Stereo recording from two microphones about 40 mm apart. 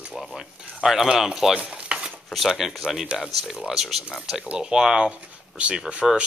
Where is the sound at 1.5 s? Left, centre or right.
Right.